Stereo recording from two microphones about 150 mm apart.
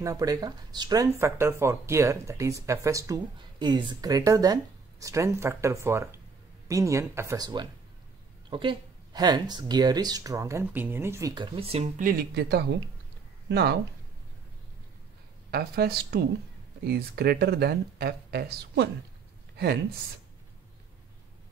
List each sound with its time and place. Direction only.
0.0 s speech: 20° right (ahead or behind); by 11.9 s 40° right (ahead or behind)
12.0 s speech: 75° right (ahead or behind)
15.5 s speech: 90° right
19.5 s a sound: 90° right